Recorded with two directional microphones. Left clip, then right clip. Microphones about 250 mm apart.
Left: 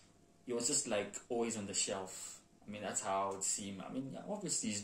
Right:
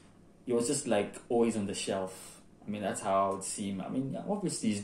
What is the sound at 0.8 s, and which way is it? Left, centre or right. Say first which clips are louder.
Speech: right 8 dB; centre.